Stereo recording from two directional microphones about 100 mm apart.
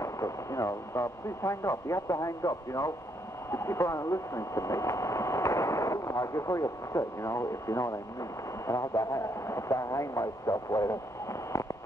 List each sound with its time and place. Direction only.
0.0 s speech: 30° left (ahead or behind)